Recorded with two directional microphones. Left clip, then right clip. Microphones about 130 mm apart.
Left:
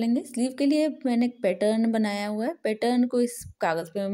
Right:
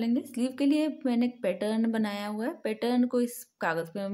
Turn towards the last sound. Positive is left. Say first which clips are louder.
# left 4 dB
turn(degrees=30)  # may be behind; listen again after turning